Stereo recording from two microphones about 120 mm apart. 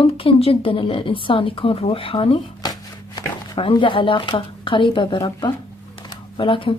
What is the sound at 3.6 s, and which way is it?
Speech, 45° left (ahead or behind).